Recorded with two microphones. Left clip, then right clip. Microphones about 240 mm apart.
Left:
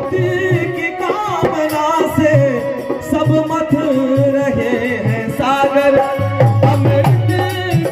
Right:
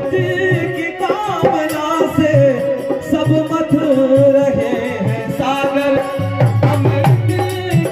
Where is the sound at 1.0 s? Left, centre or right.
Left.